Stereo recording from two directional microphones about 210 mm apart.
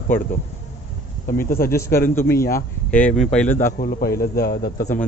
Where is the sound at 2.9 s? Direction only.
5° left (ahead or behind).